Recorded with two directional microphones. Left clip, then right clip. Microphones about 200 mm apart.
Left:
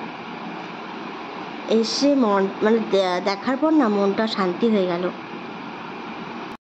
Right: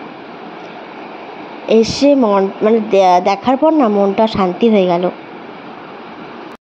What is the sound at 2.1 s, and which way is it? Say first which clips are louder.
Speech: right 7 dB; 10° right (ahead or behind).